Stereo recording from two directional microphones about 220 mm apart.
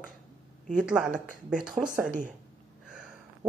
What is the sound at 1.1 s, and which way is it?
Speech, 5° right (ahead or behind).